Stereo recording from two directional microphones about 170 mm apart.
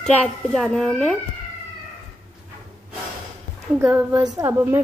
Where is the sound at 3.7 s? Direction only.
15° right (ahead or behind).